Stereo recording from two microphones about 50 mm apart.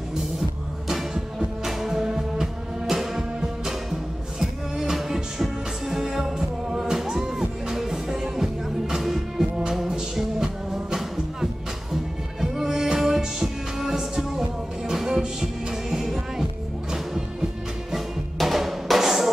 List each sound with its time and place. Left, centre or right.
0.1 s music: centre
17.9 s music: centre